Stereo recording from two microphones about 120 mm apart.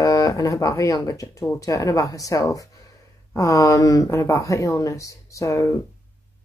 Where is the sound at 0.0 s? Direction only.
30° left (ahead or behind).